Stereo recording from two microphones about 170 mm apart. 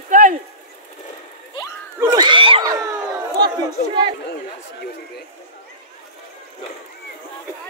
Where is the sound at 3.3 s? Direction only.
25° right (ahead or behind).